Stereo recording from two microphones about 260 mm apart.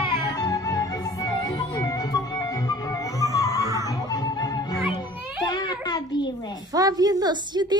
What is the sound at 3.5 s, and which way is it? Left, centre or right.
Music, centre.